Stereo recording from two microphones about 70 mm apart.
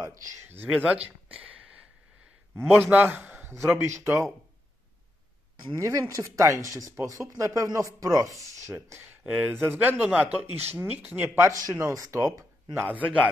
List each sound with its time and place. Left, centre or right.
0.0 s speech: right
0.7 s a sound: centre
2.5 s speech: right
5.8 s speech: right
9.2 s speech: right
9.5 s speech: right
10.6 s speech: right
11.2 s speech: right
12.8 s speech: right